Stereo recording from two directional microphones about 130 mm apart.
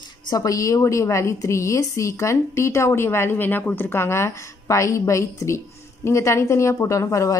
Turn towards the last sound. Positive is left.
turn(degrees=25)  # may be behind; listen again after turning